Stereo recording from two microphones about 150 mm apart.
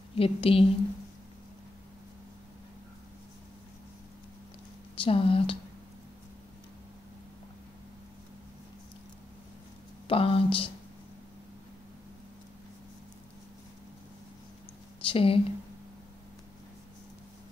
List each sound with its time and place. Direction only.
0.1 s speech: 40° left (ahead or behind)
4.9 s speech: 35° left (ahead or behind)
10.0 s speech: 40° left (ahead or behind)
15.0 s speech: 40° left (ahead or behind)